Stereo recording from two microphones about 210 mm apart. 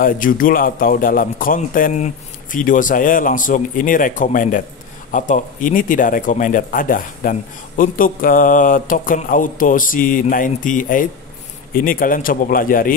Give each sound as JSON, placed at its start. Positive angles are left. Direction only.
{"t": 0.0, "sound": "speech", "side_deg": 40}